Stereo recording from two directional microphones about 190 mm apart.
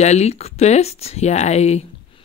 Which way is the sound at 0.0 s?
35° left (ahead or behind).